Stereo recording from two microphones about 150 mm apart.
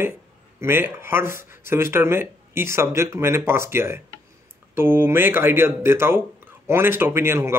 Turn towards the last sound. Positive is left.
turn(degrees=-15)  # may be behind; listen again after turning